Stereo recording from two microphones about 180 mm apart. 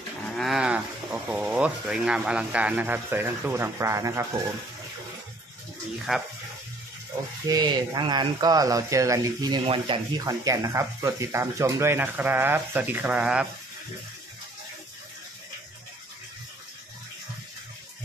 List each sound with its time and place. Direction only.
0.4 s speech: 5° right (ahead or behind)
6.1 s speech: centre (ahead or behind)
7.4 s speech: 20° right (ahead or behind); by 13.5 s 5° right (ahead or behind)